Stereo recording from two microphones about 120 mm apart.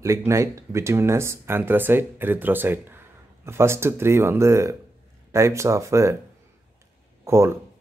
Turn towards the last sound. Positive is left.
turn(degrees=-20)  # may be behind; listen again after turning